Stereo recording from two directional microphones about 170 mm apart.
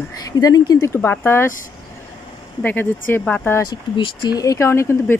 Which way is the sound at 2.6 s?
10° left (ahead or behind).